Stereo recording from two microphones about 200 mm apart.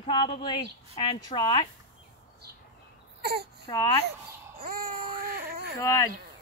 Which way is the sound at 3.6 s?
15° left (ahead or behind).